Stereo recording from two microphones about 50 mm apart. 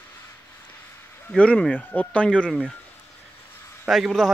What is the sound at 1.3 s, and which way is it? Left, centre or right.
Speech, left.